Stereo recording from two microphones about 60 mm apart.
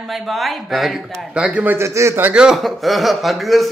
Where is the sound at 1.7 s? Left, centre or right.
Right.